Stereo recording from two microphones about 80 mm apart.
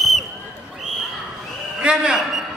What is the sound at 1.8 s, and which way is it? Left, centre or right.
Speech, centre.